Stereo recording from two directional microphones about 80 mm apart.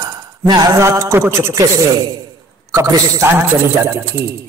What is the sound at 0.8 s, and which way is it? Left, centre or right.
Speech, right.